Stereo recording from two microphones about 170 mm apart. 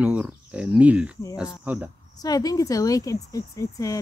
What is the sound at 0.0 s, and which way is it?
Speech, 10° right (ahead or behind).